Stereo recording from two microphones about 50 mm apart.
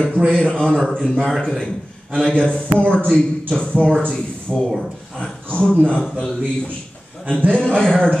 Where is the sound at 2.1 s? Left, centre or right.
Centre.